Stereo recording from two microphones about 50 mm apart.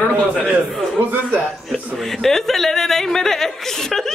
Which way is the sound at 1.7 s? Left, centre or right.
Centre.